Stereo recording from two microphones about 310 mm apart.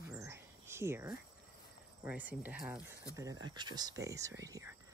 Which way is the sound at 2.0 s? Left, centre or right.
Centre.